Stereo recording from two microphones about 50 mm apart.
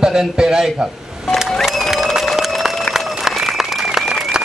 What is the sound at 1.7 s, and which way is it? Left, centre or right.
Applause, centre.